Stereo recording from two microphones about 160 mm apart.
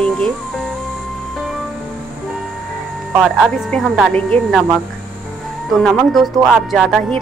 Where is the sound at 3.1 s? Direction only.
5° right (ahead or behind).